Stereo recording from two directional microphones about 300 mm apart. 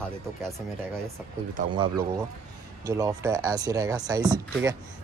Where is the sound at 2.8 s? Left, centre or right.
Centre.